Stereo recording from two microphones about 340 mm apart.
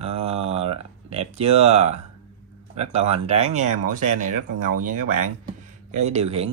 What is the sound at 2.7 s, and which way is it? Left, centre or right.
Speech, centre.